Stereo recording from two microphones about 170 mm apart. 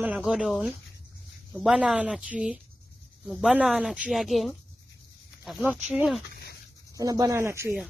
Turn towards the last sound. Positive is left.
turn(degrees=-15)  # may be behind; listen again after turning